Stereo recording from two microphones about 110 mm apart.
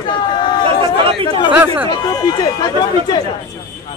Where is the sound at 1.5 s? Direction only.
15° right (ahead or behind).